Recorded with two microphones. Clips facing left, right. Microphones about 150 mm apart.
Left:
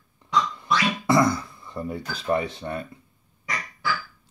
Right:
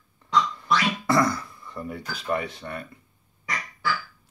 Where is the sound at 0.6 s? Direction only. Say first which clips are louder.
Even; 20° left (ahead or behind).